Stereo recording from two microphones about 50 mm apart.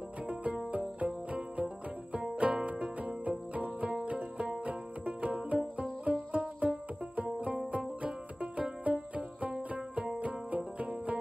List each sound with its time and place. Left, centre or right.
0.3 s cricket: right
2.1 s music: right
3.3 s cricket: right
4.4 s music: right